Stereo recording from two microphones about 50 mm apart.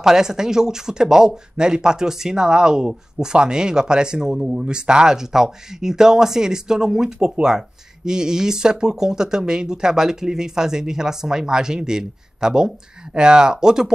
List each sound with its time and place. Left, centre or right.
0.0 s speech: centre